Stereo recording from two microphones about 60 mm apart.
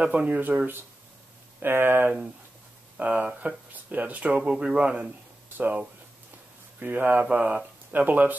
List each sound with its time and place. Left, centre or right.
0.0 s speech: right
3.0 s speech: right